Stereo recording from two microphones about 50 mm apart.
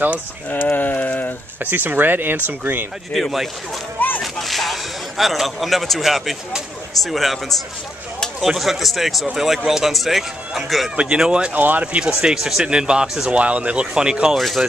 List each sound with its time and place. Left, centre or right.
0.5 s a sound: left
1.6 s speech: right
3.1 s speech: centre
11.0 s speech: centre
11.5 s speech: right
11.8 s speech: right
13.4 s speech: right
14.3 s speech: centre